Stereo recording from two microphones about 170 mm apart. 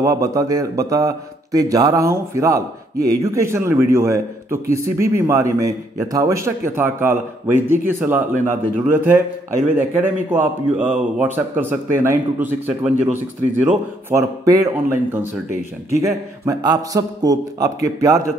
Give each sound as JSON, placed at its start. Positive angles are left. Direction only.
{"t": 0.0, "sound": "a man's voice", "side_deg": -20}